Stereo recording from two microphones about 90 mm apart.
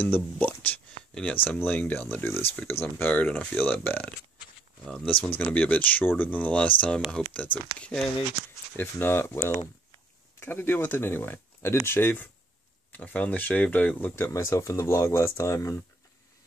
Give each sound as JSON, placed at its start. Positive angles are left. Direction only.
{"t": 0.0, "sound": "a sound", "side_deg": 20}
{"t": 1.1, "sound": "speech", "side_deg": 15}
{"t": 4.8, "sound": "speech", "side_deg": 10}
{"t": 8.7, "sound": "speech", "side_deg": 25}